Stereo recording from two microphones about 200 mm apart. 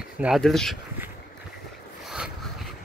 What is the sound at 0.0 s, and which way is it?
Speech, 5° right (ahead or behind).